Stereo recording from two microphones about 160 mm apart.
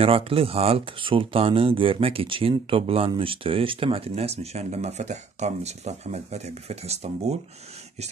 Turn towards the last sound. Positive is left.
turn(degrees=-40)  # may be behind; listen again after turning